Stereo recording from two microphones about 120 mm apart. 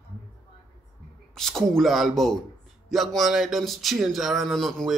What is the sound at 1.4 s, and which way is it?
A man's voice, 5° left (ahead or behind).